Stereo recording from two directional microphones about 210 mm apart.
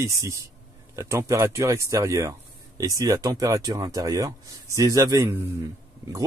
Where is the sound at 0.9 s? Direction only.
15° right (ahead or behind).